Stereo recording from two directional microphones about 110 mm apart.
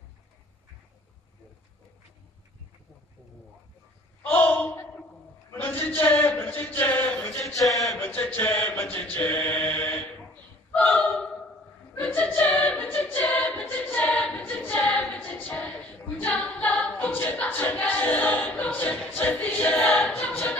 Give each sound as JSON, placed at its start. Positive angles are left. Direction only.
{"t": 4.2, "sound": "a sound", "side_deg": 15}
{"t": 5.5, "sound": "speech", "side_deg": 20}
{"t": 7.6, "sound": "speech", "side_deg": 0}
{"t": 8.0, "sound": "chant", "side_deg": 15}
{"t": 10.9, "sound": "a sound", "side_deg": 5}
{"t": 11.9, "sound": "a capella", "side_deg": 15}
{"t": 15.1, "sound": "a capella", "side_deg": 15}
{"t": 19.1, "sound": "choir", "side_deg": 15}